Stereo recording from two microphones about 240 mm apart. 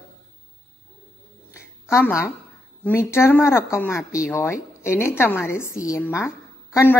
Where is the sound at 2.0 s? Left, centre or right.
Centre.